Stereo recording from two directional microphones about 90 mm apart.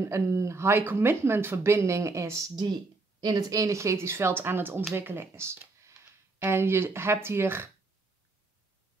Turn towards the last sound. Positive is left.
turn(degrees=-25)  # may be behind; listen again after turning